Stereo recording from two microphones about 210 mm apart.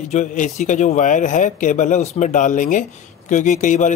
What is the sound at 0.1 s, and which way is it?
Speech, 35° left (ahead or behind).